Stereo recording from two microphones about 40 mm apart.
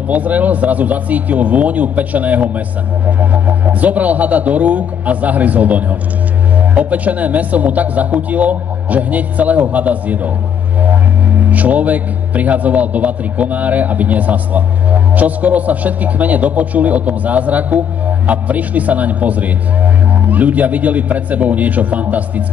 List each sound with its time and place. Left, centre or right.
0.1 s speech: right